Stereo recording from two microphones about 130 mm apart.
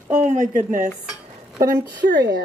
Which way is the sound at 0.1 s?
75° right (ahead or behind).